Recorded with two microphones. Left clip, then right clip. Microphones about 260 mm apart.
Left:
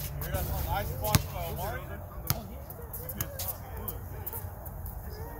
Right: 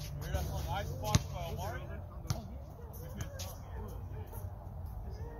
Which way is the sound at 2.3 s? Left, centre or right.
Left.